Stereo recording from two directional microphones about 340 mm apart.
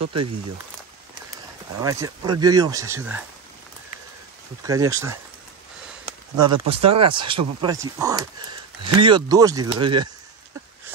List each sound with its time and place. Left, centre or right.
0.0 s speech: right
1.8 s speech: centre
4.6 s speech: centre
6.3 s speech: centre